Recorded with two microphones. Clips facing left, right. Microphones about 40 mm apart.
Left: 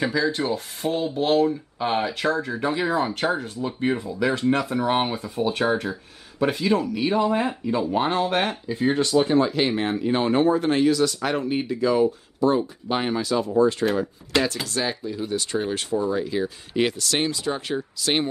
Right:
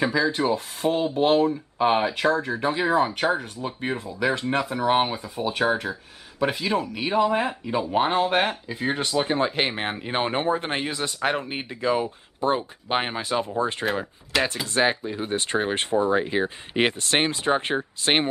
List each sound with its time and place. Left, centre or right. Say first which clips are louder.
0.0 s speech: right 1 dB; centre
4.2 s speech: left 1 dB; centre
9.4 s speech: left 3 dB; right